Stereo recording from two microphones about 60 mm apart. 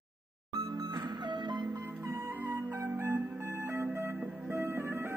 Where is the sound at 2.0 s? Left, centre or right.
Right.